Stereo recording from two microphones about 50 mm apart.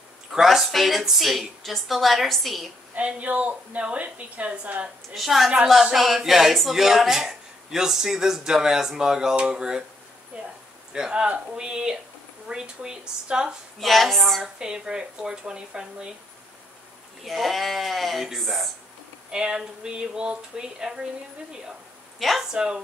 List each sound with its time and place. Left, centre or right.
0.3 s a woman's voice: centre
3.0 s a woman's voice: right
5.1 s a woman's voice: centre
10.3 s a sound: right
10.9 s speech: centre
13.7 s a woman's voice: centre
14.6 s speech: centre
17.2 s a woman's voice: centre
19.3 s speech: centre
22.2 s a woman's voice: centre
22.5 s speech: centre